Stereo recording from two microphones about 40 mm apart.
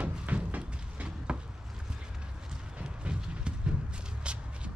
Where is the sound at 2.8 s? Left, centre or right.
Right.